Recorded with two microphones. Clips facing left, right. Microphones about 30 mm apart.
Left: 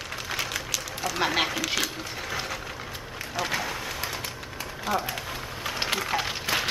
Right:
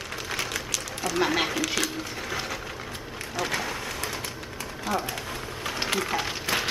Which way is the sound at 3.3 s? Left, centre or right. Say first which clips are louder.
Even; centre.